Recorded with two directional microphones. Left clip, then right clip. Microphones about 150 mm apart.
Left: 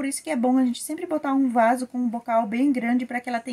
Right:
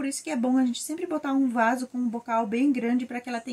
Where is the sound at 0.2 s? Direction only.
25° left (ahead or behind).